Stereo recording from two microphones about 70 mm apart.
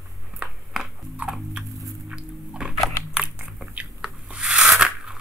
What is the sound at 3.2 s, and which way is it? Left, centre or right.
Biting, centre.